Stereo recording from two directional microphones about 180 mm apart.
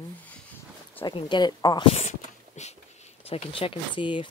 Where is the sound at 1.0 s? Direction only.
25° left (ahead or behind).